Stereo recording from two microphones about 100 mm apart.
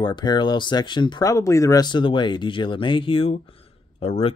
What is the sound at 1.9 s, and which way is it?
Speech, 50° left (ahead or behind).